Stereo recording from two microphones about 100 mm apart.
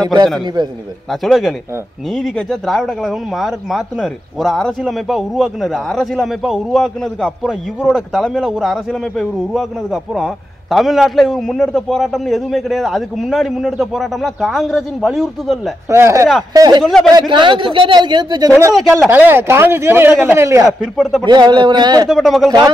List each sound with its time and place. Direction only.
0.6 s speech: 50° right (ahead or behind)
1.1 s speech: centre (ahead or behind)
15.9 s a man's voice: 30° right (ahead or behind)
16.8 s speech: 5° left (ahead or behind)
17.3 s speech: 55° right (ahead or behind)
18.8 s speech: centre (ahead or behind)
19.0 s speech: 20° right (ahead or behind)
20.8 s speech: 5° left (ahead or behind)
21.2 s speech: 45° right (ahead or behind)
22.1 s speech: centre (ahead or behind)